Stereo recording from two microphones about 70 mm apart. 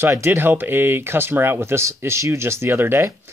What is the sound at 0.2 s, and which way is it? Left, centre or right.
Speech, right.